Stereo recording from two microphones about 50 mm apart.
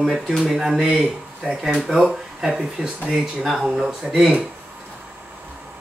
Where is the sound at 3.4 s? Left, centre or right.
Centre.